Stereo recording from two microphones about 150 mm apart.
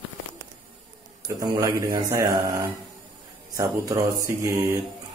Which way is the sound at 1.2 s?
25° right (ahead or behind).